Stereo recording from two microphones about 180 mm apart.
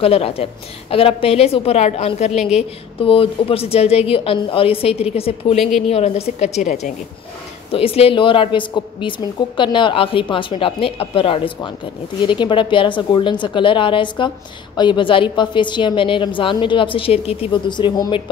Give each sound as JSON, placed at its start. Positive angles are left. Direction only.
{"t": 0.0, "sound": "a woman's voice", "side_deg": 35}
{"t": 5.6, "sound": "a woman's voice", "side_deg": 0}
{"t": 5.9, "sound": "a woman's voice", "side_deg": 35}